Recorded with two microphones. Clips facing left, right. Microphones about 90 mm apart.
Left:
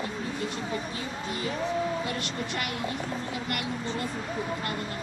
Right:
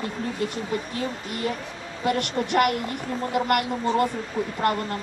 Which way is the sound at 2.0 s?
60° right (ahead or behind).